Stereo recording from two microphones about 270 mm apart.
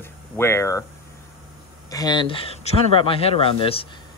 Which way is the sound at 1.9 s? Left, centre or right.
Centre.